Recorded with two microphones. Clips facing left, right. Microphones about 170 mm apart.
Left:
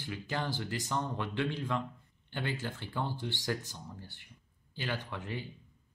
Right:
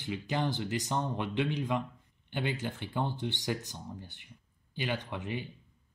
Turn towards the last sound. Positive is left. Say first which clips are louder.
# right 3 dB
turn(degrees=-20)  # may be behind; listen again after turning